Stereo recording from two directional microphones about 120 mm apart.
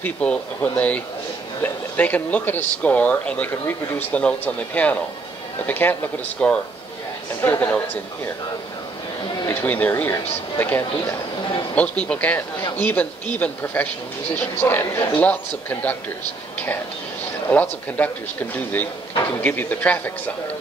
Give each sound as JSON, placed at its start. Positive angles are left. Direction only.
{"t": 0.0, "sound": "speech", "side_deg": 10}
{"t": 9.5, "sound": "speech", "side_deg": 15}
{"t": 11.7, "sound": "speech", "side_deg": 10}
{"t": 17.5, "sound": "speech", "side_deg": 15}
{"t": 19.4, "sound": "speech", "side_deg": 15}